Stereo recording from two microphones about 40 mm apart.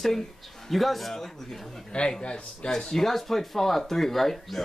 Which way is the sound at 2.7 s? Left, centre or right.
Centre.